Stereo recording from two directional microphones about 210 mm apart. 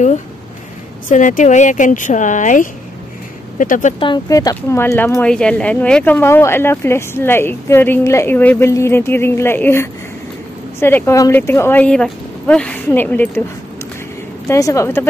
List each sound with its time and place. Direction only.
1.0 s speech: 40° left (ahead or behind)
4.0 s speech: 20° left (ahead or behind)
14.5 s speech: 15° left (ahead or behind)